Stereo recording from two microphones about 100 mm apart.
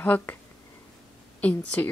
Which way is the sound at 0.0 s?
20° left (ahead or behind).